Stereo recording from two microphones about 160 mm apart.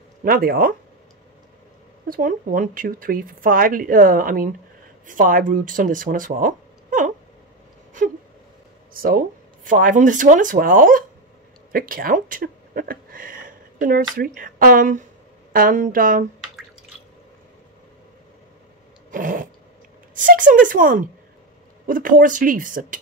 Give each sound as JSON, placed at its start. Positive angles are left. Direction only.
{"t": 0.2, "sound": "speech", "side_deg": -65}
{"t": 2.0, "sound": "speech", "side_deg": -60}
{"t": 8.9, "sound": "a sound", "side_deg": -65}
{"t": 9.7, "sound": "speech", "side_deg": -55}
{"t": 19.0, "sound": "cat", "side_deg": -55}
{"t": 20.2, "sound": "speech", "side_deg": -55}